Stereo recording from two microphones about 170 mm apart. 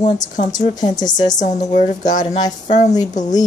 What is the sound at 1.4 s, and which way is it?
A woman's voice, 45° left (ahead or behind).